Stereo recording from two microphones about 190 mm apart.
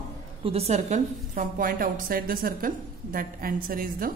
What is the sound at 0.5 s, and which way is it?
A woman's voice, 35° right (ahead or behind).